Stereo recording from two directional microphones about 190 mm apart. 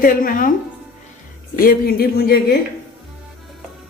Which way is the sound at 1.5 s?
50° left (ahead or behind).